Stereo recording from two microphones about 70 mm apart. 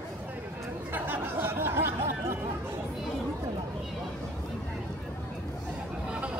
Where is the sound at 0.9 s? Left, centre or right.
Right.